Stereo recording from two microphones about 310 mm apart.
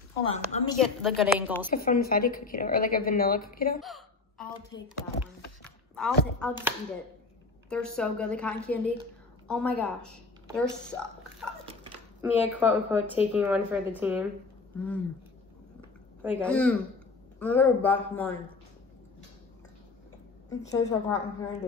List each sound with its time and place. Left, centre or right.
0.3 s a woman's voice: left
0.7 s speech: centre
1.7 s a woman's voice: left
3.8 s hiccup: centre
4.7 s a woman's voice: centre
5.2 s chopping: centre
7.7 s speech: centre
11.6 s a sound: centre
12.3 s speech: centre
16.2 s speech: centre
20.4 s a woman's voice: centre